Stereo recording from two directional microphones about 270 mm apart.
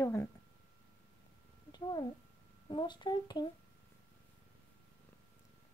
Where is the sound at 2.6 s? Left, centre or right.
Centre.